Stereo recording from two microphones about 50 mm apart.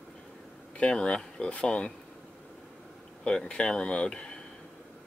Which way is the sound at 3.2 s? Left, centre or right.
Centre.